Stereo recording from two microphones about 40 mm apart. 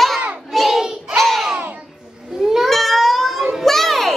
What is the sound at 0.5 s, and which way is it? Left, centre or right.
Child singing, centre.